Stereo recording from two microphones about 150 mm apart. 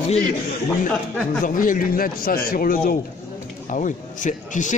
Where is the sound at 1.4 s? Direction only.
65° left (ahead or behind).